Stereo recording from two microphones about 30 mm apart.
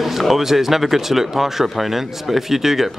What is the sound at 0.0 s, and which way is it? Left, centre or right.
Speech, centre.